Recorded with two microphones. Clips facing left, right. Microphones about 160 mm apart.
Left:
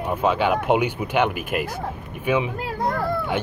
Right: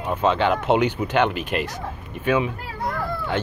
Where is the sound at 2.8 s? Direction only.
40° left (ahead or behind).